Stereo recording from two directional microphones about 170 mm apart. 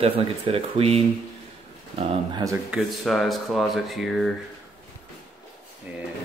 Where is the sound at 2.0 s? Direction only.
30° right (ahead or behind).